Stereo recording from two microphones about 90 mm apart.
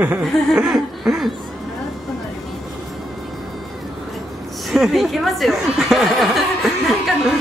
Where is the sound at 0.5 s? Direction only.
5° right (ahead or behind).